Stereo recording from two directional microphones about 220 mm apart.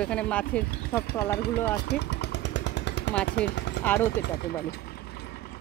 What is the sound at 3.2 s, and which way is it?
Speech, 50° left (ahead or behind).